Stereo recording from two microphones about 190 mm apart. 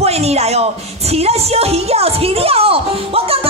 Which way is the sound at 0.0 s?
35° right (ahead or behind).